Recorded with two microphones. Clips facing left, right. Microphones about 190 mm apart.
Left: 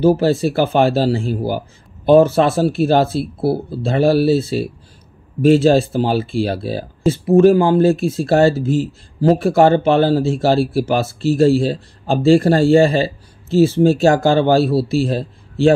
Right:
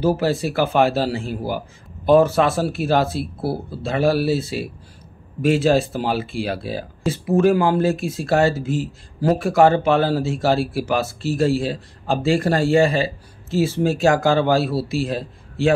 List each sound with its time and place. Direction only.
0.0 s speech: 25° left (ahead or behind)